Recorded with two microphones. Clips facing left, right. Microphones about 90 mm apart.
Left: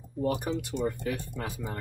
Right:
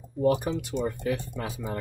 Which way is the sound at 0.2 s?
25° right (ahead or behind).